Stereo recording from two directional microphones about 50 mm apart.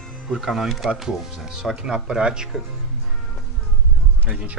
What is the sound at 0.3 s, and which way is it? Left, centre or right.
Speech, centre.